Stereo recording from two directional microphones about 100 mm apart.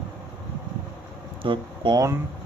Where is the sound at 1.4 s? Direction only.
55° right (ahead or behind).